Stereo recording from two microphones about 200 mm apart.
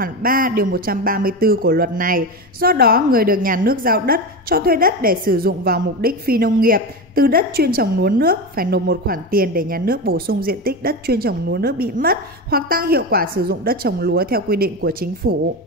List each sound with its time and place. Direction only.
0.0 s speech: 45° right (ahead or behind)